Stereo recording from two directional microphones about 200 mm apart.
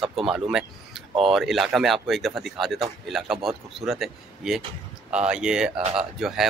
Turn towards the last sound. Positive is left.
turn(degrees=0)  # may be behind; listen again after turning